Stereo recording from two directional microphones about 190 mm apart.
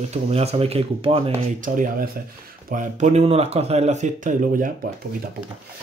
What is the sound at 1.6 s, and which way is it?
Speech, 45° right (ahead or behind).